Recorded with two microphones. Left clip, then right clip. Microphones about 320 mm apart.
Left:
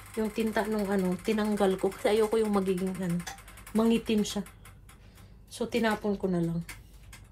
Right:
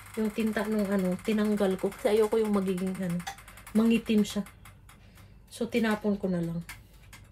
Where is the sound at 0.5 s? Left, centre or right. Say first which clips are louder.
Left 2 dB; centre.